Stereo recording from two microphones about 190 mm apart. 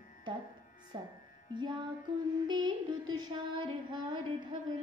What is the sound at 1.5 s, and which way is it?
Music, 25° right (ahead or behind).